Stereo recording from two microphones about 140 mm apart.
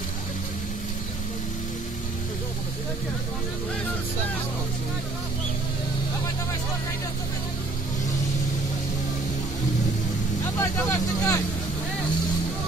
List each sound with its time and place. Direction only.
10.6 s speech: 20° left (ahead or behind)